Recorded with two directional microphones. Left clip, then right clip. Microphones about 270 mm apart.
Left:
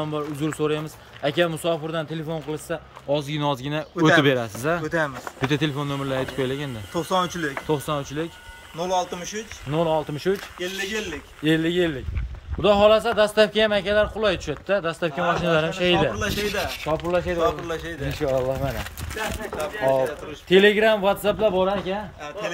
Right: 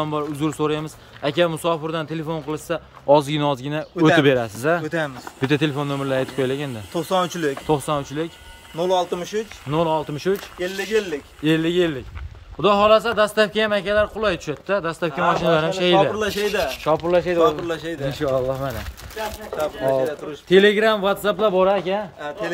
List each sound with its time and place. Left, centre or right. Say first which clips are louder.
0.0 s speech: right 4 dB; centre
3.4 s speech: right 2 dB; centre
7.6 s speech: right 3 dB; centre
8.7 s speech: right 4 dB; right
9.7 s speech: right 1 dB; centre
10.3 s speech: right 3 dB; centre
11.4 s speech: right 2 dB; centre
16.2 s speech: right 4 dB; right
16.8 s speech: right 6 dB; centre
17.4 s speech: right 5 dB; right
18.1 s speech: right 1 dB; centre
20.4 s speech: right 1 dB; centre